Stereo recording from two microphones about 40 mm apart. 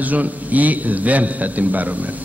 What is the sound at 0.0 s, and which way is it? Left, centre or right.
A man's voice, right.